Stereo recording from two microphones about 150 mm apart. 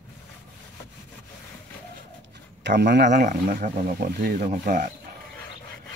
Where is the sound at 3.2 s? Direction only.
60° right (ahead or behind).